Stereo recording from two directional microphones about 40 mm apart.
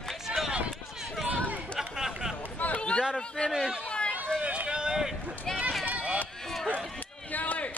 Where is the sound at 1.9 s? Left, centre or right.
Centre.